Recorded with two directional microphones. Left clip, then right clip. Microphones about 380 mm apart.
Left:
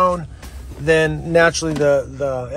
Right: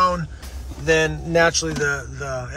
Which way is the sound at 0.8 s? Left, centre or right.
Centre.